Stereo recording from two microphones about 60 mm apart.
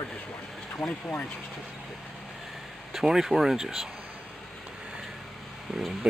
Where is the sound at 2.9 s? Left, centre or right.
Centre.